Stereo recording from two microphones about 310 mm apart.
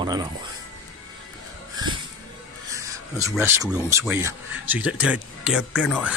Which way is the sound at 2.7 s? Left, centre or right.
Centre.